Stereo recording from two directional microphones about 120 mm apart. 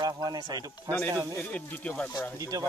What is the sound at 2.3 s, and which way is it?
Speech, 30° right (ahead or behind).